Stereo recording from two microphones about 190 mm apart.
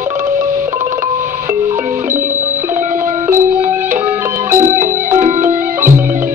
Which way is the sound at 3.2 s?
10° right (ahead or behind).